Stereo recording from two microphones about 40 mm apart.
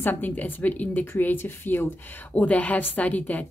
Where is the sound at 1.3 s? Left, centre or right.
Left.